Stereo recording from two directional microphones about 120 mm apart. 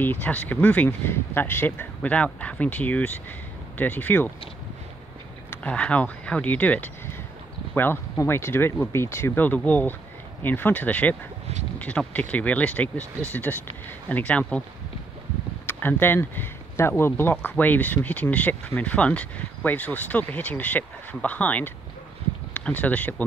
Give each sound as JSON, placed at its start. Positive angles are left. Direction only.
{"t": 0.0, "sound": "speech", "side_deg": 15}
{"t": 5.5, "sound": "speech", "side_deg": 10}
{"t": 15.6, "sound": "speech", "side_deg": 15}